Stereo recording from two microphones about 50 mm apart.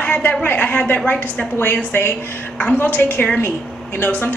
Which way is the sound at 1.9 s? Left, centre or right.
Left.